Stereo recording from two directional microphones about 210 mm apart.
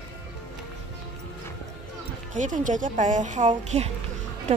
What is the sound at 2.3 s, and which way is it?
A woman's voice, 35° right (ahead or behind).